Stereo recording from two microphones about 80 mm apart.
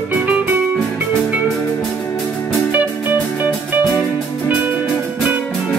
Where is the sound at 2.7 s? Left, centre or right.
Right.